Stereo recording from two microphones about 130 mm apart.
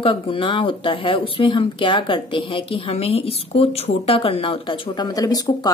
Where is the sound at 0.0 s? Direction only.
40° left (ahead or behind).